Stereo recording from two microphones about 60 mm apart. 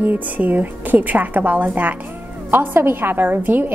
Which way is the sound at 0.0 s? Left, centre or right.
Right.